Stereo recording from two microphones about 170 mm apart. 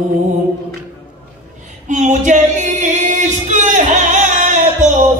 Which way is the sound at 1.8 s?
45° right (ahead or behind).